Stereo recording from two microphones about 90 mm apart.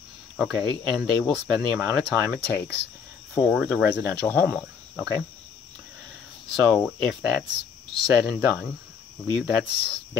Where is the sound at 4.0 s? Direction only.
15° left (ahead or behind).